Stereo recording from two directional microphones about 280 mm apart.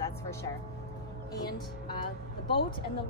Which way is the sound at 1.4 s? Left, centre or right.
Centre.